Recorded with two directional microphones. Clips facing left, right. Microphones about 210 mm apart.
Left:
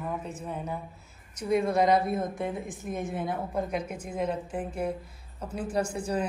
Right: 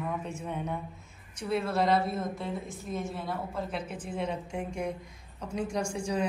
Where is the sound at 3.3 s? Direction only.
15° left (ahead or behind).